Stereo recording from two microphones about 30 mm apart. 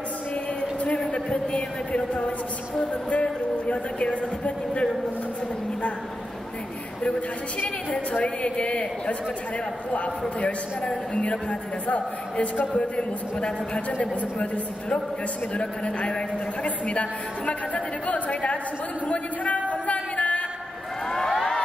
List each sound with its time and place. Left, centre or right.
0.6 s a sound: left
0.9 s a sound: left
3.1 s speech: left
7.0 s a woman's voice: left
10.9 s speech: left
12.7 s speech: left
16.6 s speech: left
19.7 s music: left
21.1 s a sound: centre